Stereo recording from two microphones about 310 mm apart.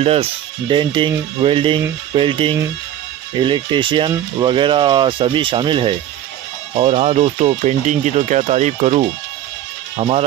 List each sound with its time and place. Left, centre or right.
0.0 s speech: centre